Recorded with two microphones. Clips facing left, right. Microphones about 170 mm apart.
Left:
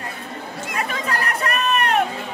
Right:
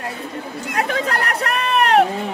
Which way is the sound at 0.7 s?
75° right (ahead or behind).